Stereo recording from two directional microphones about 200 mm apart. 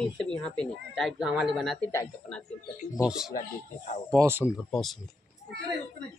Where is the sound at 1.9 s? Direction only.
10° left (ahead or behind).